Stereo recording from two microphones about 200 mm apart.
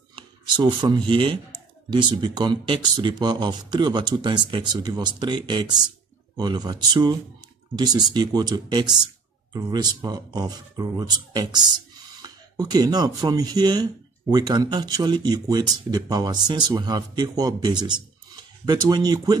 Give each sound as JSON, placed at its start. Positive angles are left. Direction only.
{"t": 0.1, "sound": "speech", "side_deg": -20}